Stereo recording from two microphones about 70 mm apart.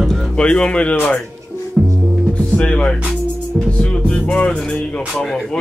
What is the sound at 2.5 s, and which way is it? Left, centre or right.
Speech, centre.